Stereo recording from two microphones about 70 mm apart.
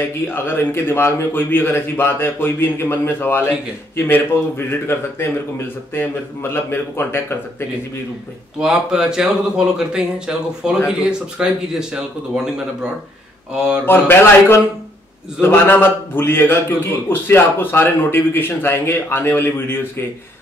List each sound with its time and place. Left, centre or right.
0.0 s a man's voice: left
5.9 s a man's voice: left
8.5 s speech: centre
13.5 s speech: centre
13.8 s a man's voice: left